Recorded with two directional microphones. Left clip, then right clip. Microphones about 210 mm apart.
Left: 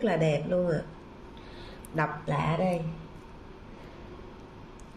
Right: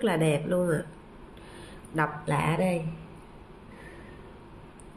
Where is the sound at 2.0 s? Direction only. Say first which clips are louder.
Right 2 dB; 15° right (ahead or behind).